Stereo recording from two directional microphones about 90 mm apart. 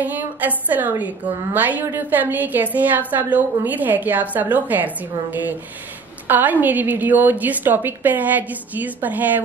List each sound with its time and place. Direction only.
0.0 s a woman's voice: 20° right (ahead or behind)